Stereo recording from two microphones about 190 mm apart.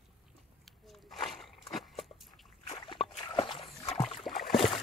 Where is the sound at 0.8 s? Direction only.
Centre (ahead or behind).